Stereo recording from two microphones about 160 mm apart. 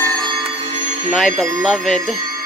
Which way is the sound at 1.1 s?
Centre (ahead or behind).